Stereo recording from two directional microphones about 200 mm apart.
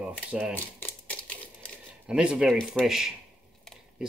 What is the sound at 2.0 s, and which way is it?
Speech, 5° right (ahead or behind).